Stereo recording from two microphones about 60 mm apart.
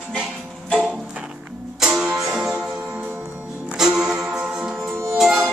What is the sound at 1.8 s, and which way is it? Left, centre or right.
Music, centre.